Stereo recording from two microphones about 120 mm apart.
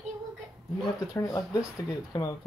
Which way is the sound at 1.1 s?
25° left (ahead or behind).